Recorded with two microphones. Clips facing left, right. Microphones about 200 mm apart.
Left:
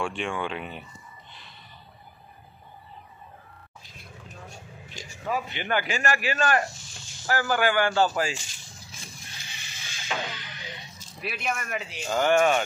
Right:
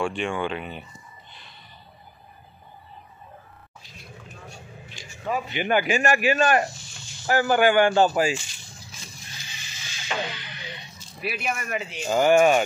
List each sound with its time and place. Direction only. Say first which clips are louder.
0.0 s speech: right 3 dB; centre (ahead or behind)
1.3 s a sound: even; centre (ahead or behind)
5.2 s speech: right 2 dB; centre (ahead or behind)
5.5 s speech: right 6 dB; 15° right (ahead or behind)
6.9 s snake: right 2 dB; centre (ahead or behind)
7.2 s speech: right 5 dB; 20° right (ahead or behind)
9.0 s a sound: even; 55° left (ahead or behind)
10.3 s music: right 1 dB; 45° left (ahead or behind)
11.1 s speech: right 2 dB; 5° right (ahead or behind)
12.1 s speech: right 4 dB; 15° right (ahead or behind)